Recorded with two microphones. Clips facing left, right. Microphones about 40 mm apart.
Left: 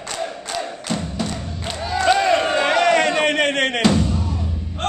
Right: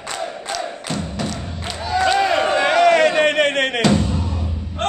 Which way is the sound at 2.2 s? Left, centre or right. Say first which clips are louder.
Right 1 dB; centre.